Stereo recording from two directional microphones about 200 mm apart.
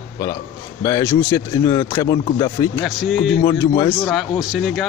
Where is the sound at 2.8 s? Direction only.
Centre (ahead or behind).